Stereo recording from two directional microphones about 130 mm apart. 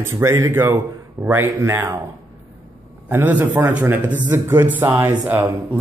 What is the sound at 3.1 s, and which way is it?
Speech, 15° right (ahead or behind).